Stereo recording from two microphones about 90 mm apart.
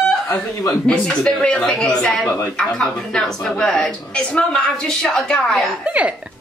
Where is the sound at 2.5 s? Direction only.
10° left (ahead or behind).